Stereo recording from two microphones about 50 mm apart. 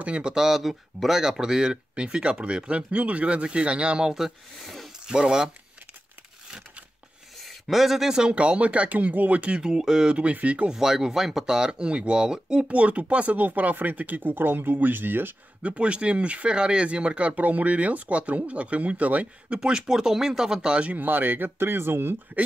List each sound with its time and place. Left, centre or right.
0.0 s speech: centre
4.1 s speech: centre
7.4 s speech: centre; by 9.6 s right
9.6 s speech: centre
10.7 s speech: centre; by 15.3 s right
15.6 s speech: right
19.6 s speech: centre
21.0 s speech: right